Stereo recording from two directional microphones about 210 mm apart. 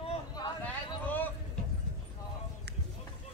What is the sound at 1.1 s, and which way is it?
Vehicle, 10° left (ahead or behind).